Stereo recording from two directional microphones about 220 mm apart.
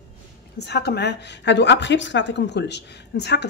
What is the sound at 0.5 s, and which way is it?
A woman's voice, 50° left (ahead or behind).